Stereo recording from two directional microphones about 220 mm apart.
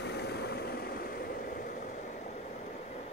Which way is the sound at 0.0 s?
50° left (ahead or behind).